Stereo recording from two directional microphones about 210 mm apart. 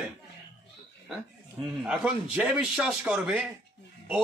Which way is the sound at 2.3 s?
5° right (ahead or behind).